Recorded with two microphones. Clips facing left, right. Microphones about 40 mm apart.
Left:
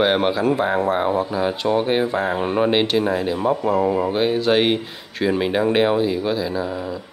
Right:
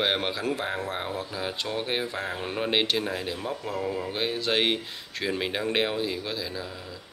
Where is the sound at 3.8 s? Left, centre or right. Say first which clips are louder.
Left 11 dB; left.